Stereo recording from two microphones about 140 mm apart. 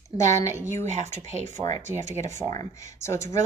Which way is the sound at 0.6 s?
20° left (ahead or behind).